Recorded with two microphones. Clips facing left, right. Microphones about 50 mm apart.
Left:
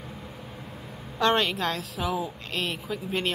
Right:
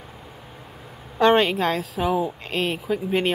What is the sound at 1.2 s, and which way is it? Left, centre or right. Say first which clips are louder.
Speech: right 6 dB; right.